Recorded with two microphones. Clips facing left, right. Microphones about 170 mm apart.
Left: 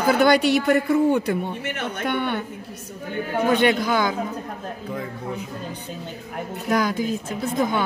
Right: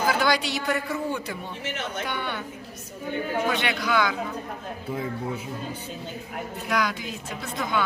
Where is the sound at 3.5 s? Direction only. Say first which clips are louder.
Left 6 dB; 45° left (ahead or behind).